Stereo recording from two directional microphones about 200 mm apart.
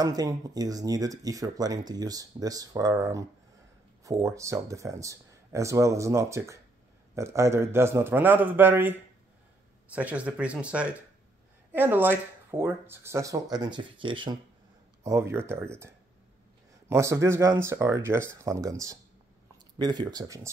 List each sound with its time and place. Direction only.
0.0 s speech: 20° right (ahead or behind)
15.0 s speech: 15° right (ahead or behind)
16.9 s speech: 15° right (ahead or behind)